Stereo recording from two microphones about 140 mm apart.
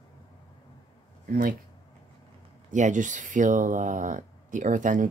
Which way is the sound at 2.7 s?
65° right (ahead or behind).